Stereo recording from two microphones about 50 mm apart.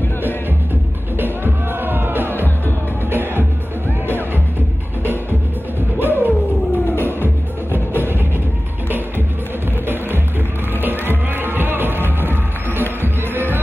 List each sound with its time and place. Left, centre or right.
1.1 s music: right
5.9 s music: right
7.0 s music: left
10.8 s music: right